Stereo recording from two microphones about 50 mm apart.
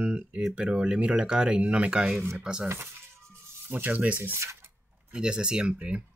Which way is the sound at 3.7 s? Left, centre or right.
Right.